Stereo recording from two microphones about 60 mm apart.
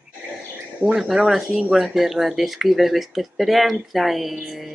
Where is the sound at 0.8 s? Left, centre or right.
Centre.